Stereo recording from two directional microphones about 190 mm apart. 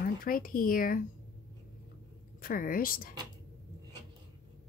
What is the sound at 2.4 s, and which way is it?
Speech, 50° left (ahead or behind).